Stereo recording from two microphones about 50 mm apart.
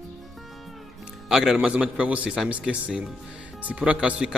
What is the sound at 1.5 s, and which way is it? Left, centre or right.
A man's voice, right.